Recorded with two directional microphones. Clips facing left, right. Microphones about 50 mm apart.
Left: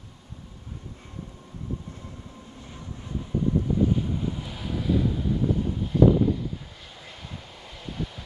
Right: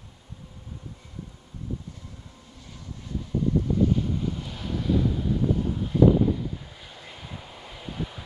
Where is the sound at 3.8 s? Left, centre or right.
Centre.